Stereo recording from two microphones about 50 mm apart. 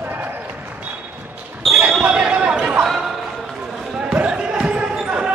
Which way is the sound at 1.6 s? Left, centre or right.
Centre.